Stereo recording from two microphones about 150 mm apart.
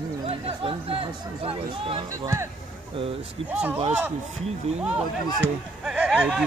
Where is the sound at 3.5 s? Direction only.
10° right (ahead or behind).